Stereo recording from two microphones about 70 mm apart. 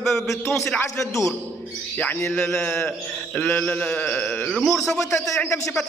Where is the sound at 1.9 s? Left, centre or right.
Left.